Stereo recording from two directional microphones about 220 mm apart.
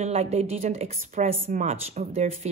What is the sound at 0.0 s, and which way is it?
Speech, 30° right (ahead or behind).